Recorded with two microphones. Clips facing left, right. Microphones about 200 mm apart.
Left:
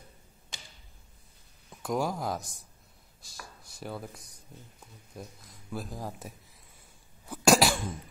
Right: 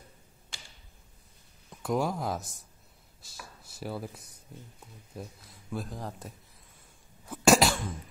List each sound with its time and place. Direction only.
0.5 s a sound: 20° left (ahead or behind)
1.7 s speech: centre (ahead or behind)
7.2 s cough: centre (ahead or behind)